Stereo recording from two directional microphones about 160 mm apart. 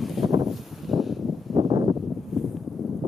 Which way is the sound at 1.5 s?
25° right (ahead or behind).